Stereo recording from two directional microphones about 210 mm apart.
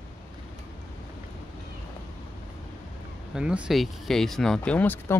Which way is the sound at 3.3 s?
5° right (ahead or behind).